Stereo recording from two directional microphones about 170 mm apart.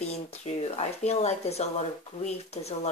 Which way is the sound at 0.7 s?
40° left (ahead or behind).